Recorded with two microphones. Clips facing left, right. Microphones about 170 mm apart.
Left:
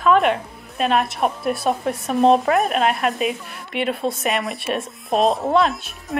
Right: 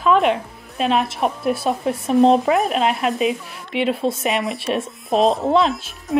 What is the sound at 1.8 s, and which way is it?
Speech, 20° right (ahead or behind).